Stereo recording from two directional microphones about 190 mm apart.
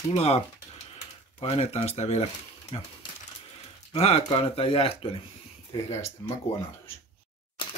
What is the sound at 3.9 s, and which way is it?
Speech, 30° left (ahead or behind).